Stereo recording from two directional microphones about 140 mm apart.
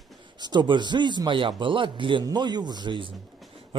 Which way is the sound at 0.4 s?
30° right (ahead or behind).